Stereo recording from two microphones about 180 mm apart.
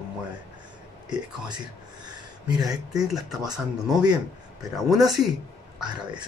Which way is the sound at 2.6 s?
20° right (ahead or behind).